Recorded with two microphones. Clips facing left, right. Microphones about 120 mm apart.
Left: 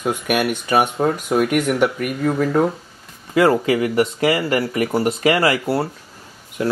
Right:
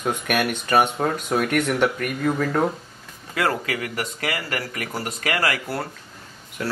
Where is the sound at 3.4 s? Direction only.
25° left (ahead or behind).